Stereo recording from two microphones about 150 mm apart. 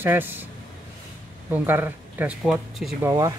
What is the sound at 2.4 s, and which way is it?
Speech, centre (ahead or behind).